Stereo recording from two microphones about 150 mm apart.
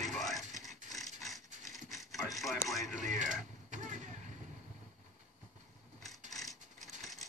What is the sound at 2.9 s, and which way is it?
Mechanisms, 55° right (ahead or behind).